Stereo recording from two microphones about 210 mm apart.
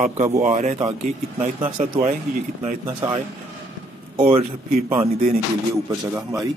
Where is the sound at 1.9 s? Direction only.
30° right (ahead or behind).